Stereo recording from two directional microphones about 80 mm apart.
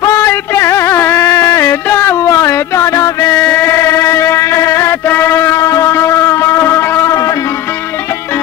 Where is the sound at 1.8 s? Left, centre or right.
Left.